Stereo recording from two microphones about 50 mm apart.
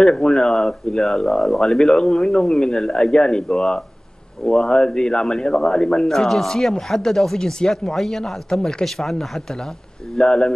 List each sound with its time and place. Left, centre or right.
0.0 s speech: centre
10.1 s speech: centre